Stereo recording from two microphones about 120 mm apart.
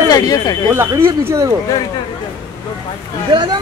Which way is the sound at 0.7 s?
20° right (ahead or behind).